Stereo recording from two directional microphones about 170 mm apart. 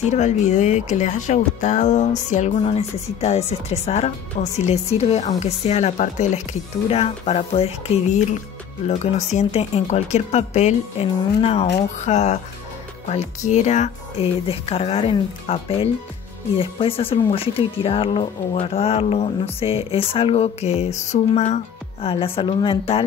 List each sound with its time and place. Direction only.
0.1 s speech: 45° left (ahead or behind)